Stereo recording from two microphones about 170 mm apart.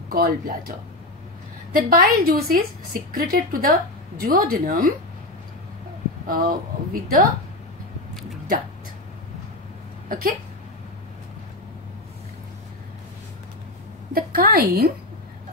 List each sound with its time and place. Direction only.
0.1 s speech: 60° right (ahead or behind)
6.2 s speech: 55° right (ahead or behind)
8.1 s a sound: centre (ahead or behind)
10.0 s speech: 55° right (ahead or behind)
14.1 s speech: 60° right (ahead or behind)